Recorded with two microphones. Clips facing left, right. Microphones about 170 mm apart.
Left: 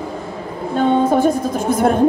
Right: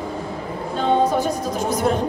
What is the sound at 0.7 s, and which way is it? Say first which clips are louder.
A woman's voice: left 4 dB; 55° left (ahead or behind).